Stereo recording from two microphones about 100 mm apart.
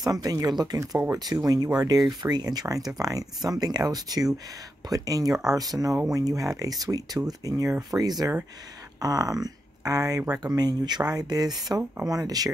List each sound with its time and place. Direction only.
0.0 s speech: 35° right (ahead or behind)
0.9 s speech: 25° right (ahead or behind)
1.3 s speech: 40° right (ahead or behind)
7.9 s speech: 20° right (ahead or behind)
9.0 s speech: 35° right (ahead or behind)